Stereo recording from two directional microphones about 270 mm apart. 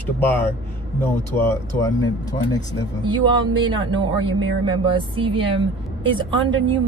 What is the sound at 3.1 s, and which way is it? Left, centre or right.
Speech, centre.